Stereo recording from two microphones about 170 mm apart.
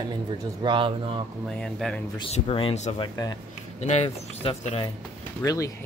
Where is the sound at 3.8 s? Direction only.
40° left (ahead or behind).